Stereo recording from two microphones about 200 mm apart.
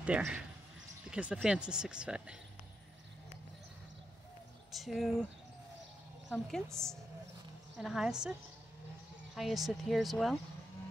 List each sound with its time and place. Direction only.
0.0 s speech: 5° right (ahead or behind)
4.7 s speech: centre (ahead or behind)
6.3 s speech: 5° left (ahead or behind)